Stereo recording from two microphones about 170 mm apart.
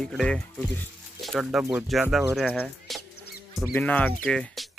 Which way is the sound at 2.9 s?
Centre (ahead or behind).